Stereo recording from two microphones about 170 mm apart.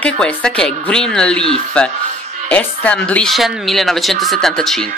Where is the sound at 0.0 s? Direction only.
5° left (ahead or behind).